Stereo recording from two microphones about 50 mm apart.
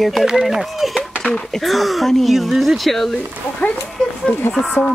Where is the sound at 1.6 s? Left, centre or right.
Centre.